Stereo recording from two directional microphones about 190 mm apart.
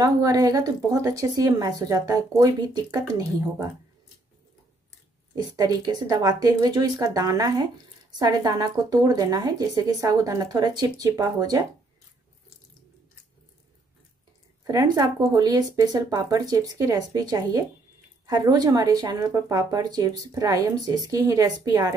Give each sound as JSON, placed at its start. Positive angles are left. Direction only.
{"t": 0.0, "sound": "a woman's voice", "side_deg": -20}
{"t": 5.3, "sound": "speech", "side_deg": -20}
{"t": 14.6, "sound": "speech", "side_deg": -20}